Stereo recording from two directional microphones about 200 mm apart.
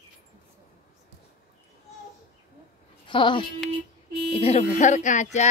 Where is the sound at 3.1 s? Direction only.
25° left (ahead or behind).